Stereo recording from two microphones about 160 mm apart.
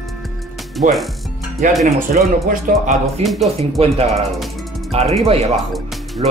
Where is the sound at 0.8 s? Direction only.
50° right (ahead or behind).